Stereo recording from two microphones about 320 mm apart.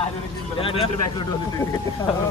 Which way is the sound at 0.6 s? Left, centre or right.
Centre.